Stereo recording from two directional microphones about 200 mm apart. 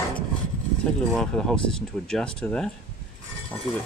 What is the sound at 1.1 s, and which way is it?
Speech, 5° left (ahead or behind).